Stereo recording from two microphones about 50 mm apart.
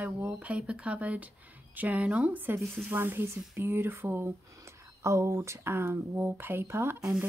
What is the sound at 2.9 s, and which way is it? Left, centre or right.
Speech, right.